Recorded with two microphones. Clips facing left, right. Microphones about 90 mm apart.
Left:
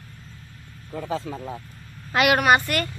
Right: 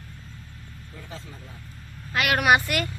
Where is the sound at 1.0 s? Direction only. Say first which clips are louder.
Left 14 dB; 90° left.